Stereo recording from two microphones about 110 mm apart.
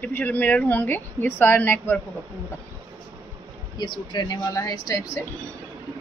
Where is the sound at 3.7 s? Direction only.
45° left (ahead or behind).